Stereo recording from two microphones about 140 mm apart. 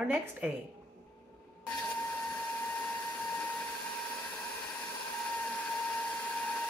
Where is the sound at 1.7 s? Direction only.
5° left (ahead or behind).